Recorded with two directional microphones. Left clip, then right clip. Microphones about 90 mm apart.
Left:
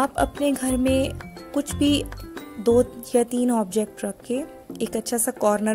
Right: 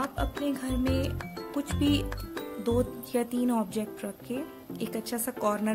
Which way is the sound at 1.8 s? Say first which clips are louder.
Left 6 dB; 55° left (ahead or behind).